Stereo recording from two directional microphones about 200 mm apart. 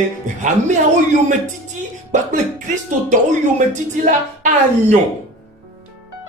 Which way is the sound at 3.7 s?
40° right (ahead or behind).